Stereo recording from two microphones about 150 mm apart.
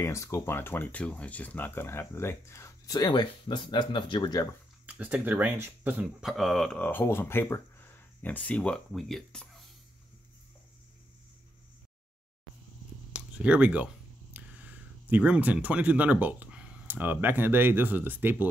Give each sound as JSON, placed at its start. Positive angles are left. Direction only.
{"t": 0.0, "sound": "speech", "side_deg": 20}
{"t": 4.8, "sound": "speech", "side_deg": -10}
{"t": 6.2, "sound": "speech", "side_deg": 0}
{"t": 13.1, "sound": "a sound", "side_deg": -10}
{"t": 15.0, "sound": "speech", "side_deg": -10}